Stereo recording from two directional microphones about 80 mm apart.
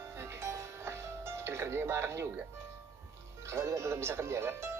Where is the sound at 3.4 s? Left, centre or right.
Right.